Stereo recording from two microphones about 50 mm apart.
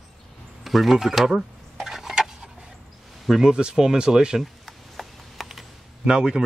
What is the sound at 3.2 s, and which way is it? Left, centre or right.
Speech, centre.